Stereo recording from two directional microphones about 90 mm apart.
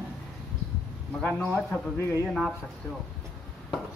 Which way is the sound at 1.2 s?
15° left (ahead or behind).